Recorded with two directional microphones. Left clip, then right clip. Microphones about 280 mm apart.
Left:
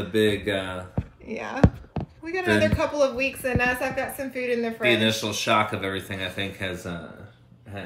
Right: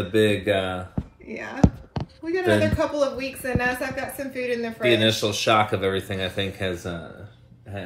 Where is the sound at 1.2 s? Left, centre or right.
Centre.